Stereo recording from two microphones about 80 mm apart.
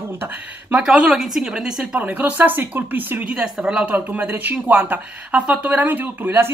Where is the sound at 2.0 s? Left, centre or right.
Centre.